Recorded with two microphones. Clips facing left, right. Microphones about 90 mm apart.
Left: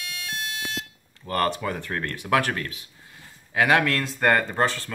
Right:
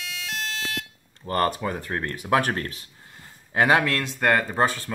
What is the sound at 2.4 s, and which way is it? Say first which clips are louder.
Speech: right 1 dB; 35° right (ahead or behind).